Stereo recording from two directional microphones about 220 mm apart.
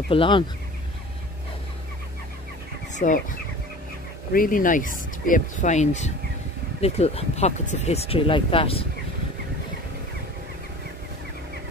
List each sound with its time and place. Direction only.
0.1 s speech: 25° left (ahead or behind)
2.9 s fowl: 35° left (ahead or behind)
4.3 s speech: 40° left (ahead or behind)